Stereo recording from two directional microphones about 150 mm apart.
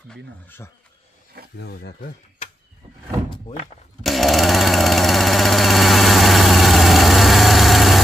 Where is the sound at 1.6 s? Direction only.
90° left.